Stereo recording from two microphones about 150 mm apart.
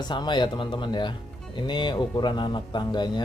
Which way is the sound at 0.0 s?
30° left (ahead or behind).